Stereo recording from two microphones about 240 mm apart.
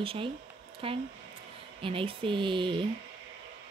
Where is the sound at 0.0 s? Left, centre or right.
Right.